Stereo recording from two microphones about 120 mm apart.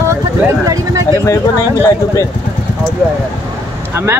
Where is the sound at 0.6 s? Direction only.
30° right (ahead or behind).